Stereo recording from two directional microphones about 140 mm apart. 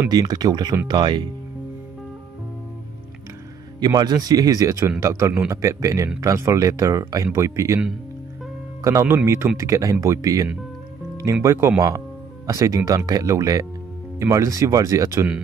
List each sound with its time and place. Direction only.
0.1 s speech: 30° right (ahead or behind)
3.8 s speech: 30° right (ahead or behind)
8.8 s speech: 20° right (ahead or behind)